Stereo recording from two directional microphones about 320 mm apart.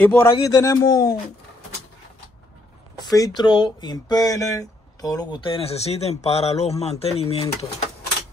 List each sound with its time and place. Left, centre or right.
0.0 s speech: centre
3.2 s speech: centre